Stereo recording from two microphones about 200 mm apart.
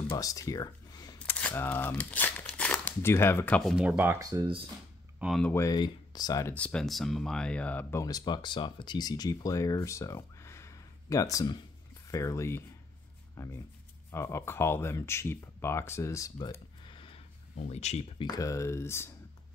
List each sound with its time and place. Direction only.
0.1 s a sound: 15° left (ahead or behind)
1.5 s speech: 10° left (ahead or behind)
3.7 s speech: 5° right (ahead or behind); by 4.6 s 25° right (ahead or behind)
5.2 s speech: centre (ahead or behind)
5.5 s speech: 15° left (ahead or behind)
6.5 s speech: 5° left (ahead or behind); by 18.3 s 30° left (ahead or behind)
18.3 s speech: 15° left (ahead or behind)